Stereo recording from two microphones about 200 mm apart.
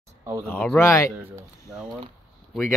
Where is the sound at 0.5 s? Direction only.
10° left (ahead or behind).